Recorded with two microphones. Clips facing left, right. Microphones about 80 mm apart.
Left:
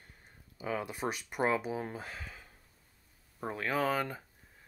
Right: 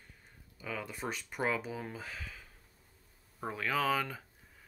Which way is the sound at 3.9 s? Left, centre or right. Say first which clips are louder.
Even; centre.